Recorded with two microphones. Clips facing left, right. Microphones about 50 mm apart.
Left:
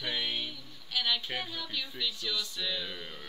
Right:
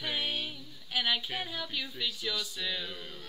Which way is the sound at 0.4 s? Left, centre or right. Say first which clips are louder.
Even; right.